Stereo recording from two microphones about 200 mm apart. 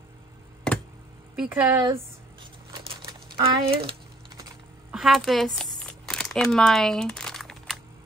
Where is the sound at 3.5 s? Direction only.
25° right (ahead or behind).